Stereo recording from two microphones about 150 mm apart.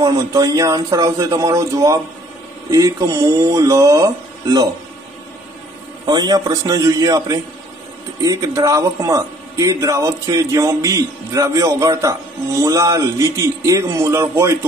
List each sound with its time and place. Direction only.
0.0 s a man's voice: 25° right (ahead or behind)
6.0 s a man's voice: 25° right (ahead or behind)